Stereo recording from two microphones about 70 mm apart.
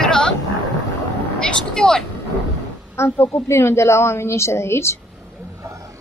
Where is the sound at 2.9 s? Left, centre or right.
Left.